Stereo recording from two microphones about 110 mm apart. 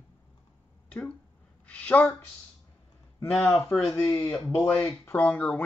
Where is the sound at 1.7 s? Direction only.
15° left (ahead or behind).